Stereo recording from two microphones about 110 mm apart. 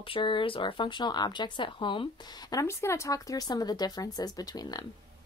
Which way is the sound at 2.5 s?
30° left (ahead or behind).